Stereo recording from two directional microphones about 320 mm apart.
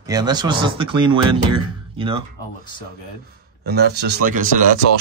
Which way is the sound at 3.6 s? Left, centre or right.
Right.